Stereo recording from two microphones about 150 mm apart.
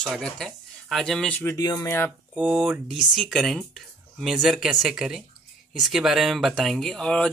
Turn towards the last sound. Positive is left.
turn(degrees=5)  # may be behind; listen again after turning